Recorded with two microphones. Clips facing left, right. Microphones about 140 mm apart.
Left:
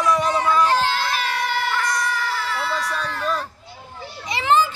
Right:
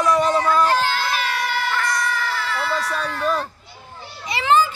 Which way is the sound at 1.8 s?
15° left (ahead or behind).